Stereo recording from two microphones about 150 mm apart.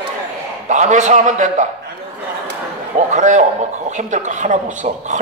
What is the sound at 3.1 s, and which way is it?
Speech, 50° right (ahead or behind).